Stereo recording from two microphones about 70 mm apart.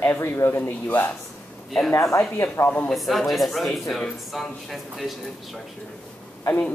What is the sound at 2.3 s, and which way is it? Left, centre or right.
Speech, left.